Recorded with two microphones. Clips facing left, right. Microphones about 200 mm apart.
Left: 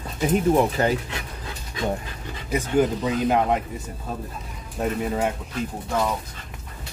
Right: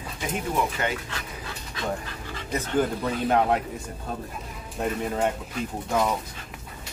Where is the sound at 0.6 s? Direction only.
35° left (ahead or behind).